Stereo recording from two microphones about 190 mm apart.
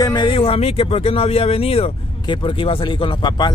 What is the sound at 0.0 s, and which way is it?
Speech, 25° left (ahead or behind).